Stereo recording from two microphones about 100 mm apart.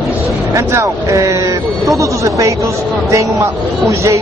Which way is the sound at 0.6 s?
30° right (ahead or behind).